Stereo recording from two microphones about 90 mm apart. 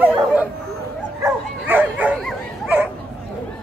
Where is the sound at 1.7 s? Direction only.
20° right (ahead or behind).